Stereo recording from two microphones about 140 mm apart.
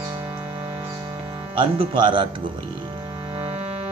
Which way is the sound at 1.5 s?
40° right (ahead or behind).